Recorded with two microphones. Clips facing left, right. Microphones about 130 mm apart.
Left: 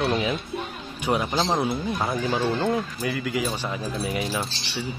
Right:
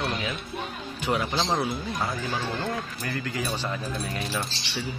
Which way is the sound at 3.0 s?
5° left (ahead or behind).